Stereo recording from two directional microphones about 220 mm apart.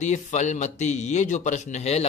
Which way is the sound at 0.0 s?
30° left (ahead or behind).